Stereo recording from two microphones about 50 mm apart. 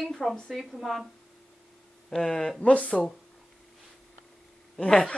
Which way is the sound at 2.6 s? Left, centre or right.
Left.